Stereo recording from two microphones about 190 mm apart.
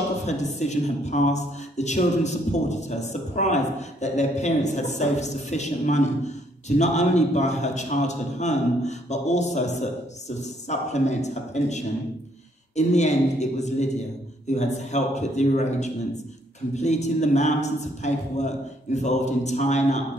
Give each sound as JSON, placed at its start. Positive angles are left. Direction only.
{"t": 0.3, "sound": "speech", "side_deg": 35}